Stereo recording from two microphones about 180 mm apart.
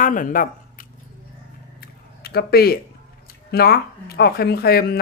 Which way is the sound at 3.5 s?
60° left (ahead or behind).